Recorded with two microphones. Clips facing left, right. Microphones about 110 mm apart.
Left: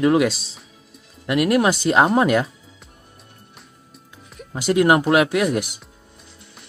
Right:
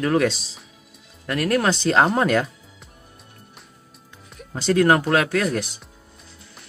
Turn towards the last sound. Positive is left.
turn(degrees=15)  # may be behind; listen again after turning